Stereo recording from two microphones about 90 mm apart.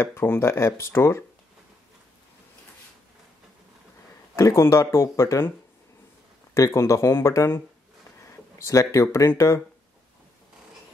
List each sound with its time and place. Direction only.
0.0 s speech: 25° left (ahead or behind)
4.4 s speech: 30° left (ahead or behind)
6.5 s speech: 35° left (ahead or behind)